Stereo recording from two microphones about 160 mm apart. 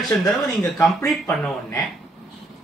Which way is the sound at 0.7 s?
15° left (ahead or behind).